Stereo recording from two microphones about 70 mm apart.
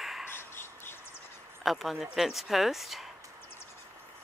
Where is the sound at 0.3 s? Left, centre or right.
Left.